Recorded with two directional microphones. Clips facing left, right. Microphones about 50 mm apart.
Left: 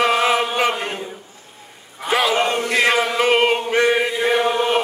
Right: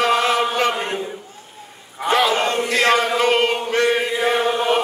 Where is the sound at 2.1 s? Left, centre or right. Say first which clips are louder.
Even; centre.